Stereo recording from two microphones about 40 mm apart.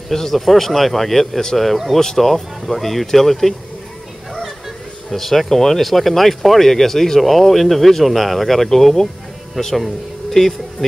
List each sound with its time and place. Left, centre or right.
0.1 s speech: centre
2.0 s speech: centre
5.1 s speech: centre